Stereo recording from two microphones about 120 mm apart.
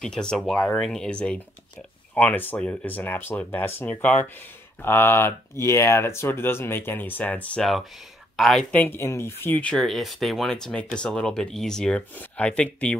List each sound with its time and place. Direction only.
0.0 s speech: 5° left (ahead or behind)
8.8 s speech: 20° left (ahead or behind)